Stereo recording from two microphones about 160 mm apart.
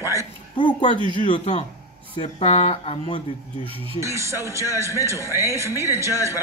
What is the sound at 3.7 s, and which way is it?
Speech, 35° right (ahead or behind).